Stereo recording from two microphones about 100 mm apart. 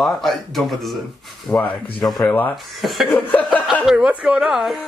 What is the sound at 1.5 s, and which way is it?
Speech, 15° left (ahead or behind).